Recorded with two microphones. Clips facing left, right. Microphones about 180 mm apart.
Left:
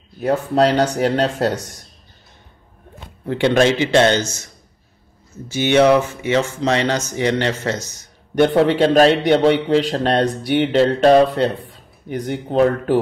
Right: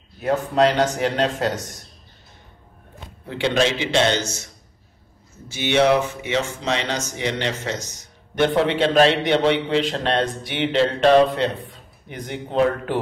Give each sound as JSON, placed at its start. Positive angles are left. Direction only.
{"t": 0.2, "sound": "a man's voice", "side_deg": 40}
{"t": 3.3, "sound": "speech", "side_deg": 55}
{"t": 5.5, "sound": "speech", "side_deg": 45}
{"t": 8.4, "sound": "a man's voice", "side_deg": 40}